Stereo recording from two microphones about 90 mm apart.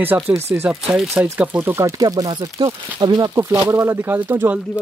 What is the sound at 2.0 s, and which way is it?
Speech, 45° right (ahead or behind).